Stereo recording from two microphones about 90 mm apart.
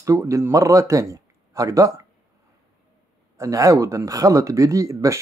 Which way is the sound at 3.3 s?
40° right (ahead or behind).